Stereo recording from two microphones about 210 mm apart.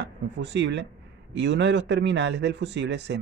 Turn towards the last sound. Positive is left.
turn(degrees=-55)  # may be behind; listen again after turning